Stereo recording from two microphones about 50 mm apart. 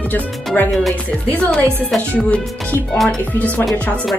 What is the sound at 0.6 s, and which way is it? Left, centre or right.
Speech, left.